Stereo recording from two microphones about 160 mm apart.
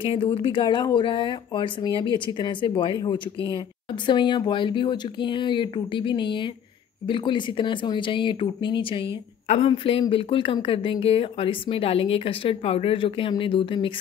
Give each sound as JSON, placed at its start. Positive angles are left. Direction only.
{"t": 0.0, "sound": "speech", "side_deg": 35}